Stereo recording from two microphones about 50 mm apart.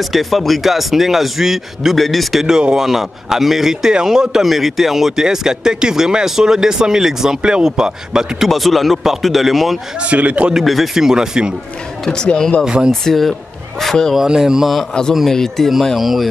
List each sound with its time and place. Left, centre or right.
0.1 s speech: centre
2.4 s speech: centre
8.5 s speech: centre
10.0 s speech: right
10.5 s speech: centre
12.1 s speech: centre
12.6 s speech: centre
13.0 s speech: centre
14.1 s speech: centre
15.3 s speech: centre